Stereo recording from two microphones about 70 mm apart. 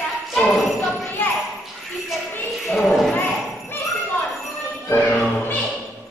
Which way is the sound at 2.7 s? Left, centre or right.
Centre.